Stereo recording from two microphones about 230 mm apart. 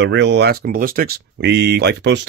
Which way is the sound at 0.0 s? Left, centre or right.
Right.